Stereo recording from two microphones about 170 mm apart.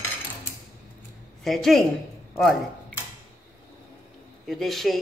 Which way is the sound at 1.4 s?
Centre (ahead or behind).